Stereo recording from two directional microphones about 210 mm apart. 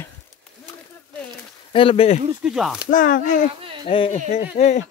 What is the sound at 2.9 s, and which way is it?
Speech, 40° left (ahead or behind).